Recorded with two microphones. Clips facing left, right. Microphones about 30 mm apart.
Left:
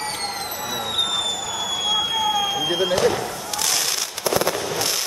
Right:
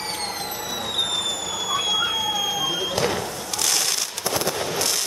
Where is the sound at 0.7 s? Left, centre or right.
Centre.